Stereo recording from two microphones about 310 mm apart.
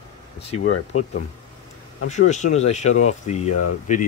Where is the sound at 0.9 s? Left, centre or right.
Left.